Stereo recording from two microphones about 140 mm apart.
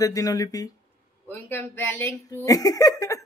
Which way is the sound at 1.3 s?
10° left (ahead or behind).